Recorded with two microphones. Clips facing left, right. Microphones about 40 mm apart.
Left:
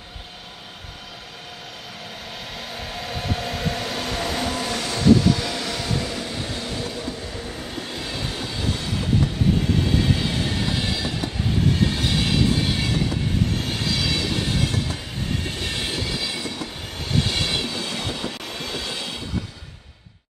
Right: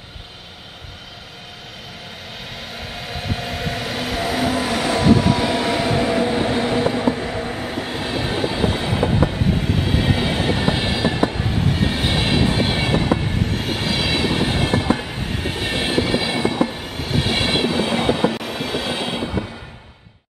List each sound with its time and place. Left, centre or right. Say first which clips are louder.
2.5 s train: right 1 dB; centre; by 7.7 s right
7.7 s train: right 5 dB; right
11.6 s train: right 1 dB; centre; by 13.2 s right
13.5 s train: right 3 dB; centre
15.3 s train: right 6 dB; right
16.9 s train: right 2 dB; centre
17.3 s train: right 6 dB; right
18.3 s train: right 7 dB; centre